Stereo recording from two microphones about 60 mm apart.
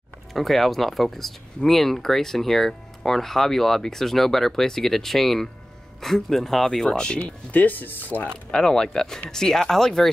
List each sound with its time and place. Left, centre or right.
0.3 s speech: centre
7.2 s speech: left
8.5 s speech: centre